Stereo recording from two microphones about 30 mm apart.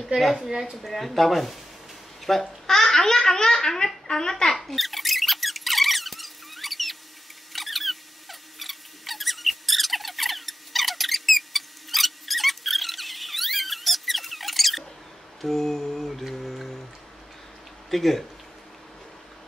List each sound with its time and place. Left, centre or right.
0.2 s mantra: centre
2.4 s a child's voice: centre
4.6 s squeak: centre
7.5 s a sound: centre
15.4 s mantra: centre
17.8 s speech: centre